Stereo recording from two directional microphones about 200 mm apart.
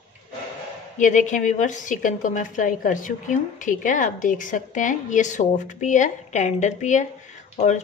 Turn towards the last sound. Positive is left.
turn(degrees=35)  # may be behind; listen again after turning